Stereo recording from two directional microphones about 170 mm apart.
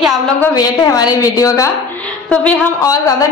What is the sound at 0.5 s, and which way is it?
A woman's voice, 20° left (ahead or behind).